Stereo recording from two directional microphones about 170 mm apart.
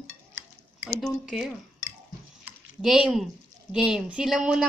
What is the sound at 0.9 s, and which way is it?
Speech, centre (ahead or behind).